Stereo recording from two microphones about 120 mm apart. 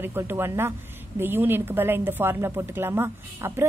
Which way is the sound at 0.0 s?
20° right (ahead or behind).